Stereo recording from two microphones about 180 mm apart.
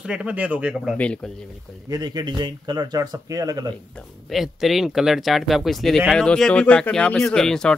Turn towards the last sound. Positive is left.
turn(degrees=5)  # may be behind; listen again after turning